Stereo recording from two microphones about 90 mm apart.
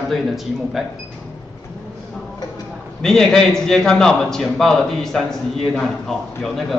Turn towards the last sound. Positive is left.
turn(degrees=0)  # may be behind; listen again after turning